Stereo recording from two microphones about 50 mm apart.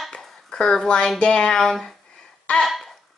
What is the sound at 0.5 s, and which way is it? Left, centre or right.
Speech, centre.